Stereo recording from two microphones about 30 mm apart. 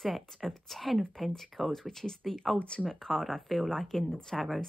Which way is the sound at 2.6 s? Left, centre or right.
Left.